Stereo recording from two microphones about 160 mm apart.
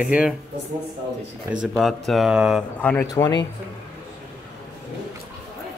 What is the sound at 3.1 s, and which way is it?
Speech, 25° left (ahead or behind).